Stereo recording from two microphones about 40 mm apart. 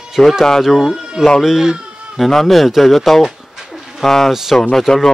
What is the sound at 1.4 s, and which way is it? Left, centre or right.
Speech, centre.